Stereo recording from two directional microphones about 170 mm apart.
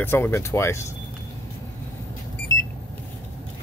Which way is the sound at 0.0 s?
10° left (ahead or behind).